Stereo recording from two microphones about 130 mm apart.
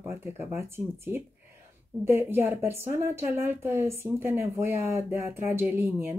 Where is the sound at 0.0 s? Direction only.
20° right (ahead or behind).